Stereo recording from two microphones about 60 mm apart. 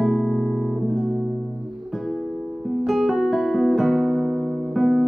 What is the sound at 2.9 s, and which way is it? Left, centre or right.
Music, centre.